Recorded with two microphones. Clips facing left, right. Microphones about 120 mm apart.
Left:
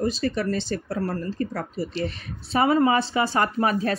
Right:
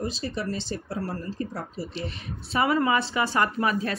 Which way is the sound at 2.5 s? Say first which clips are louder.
Left 4 dB; 30° left (ahead or behind).